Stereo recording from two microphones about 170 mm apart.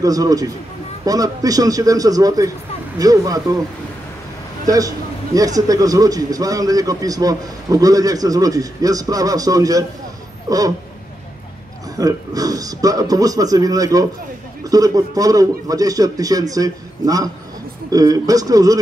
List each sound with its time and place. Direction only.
0.0 s a man's voice: 20° right (ahead or behind)
4.6 s a man's voice: 20° right (ahead or behind)
12.0 s a man's voice: 20° right (ahead or behind)